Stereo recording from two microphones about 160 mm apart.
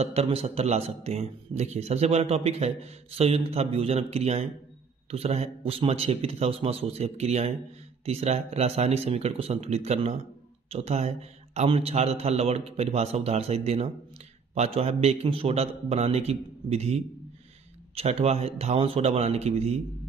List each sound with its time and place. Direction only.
0.0 s a man's voice: 40° right (ahead or behind)